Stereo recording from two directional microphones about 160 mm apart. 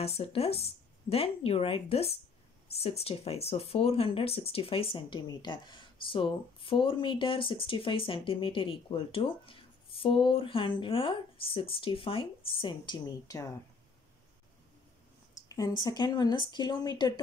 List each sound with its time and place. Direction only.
0.0 s speech: 35° left (ahead or behind)
15.3 s speech: 20° left (ahead or behind)